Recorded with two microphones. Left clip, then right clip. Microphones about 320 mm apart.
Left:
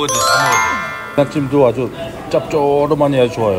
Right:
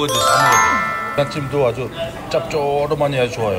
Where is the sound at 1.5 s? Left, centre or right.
Right.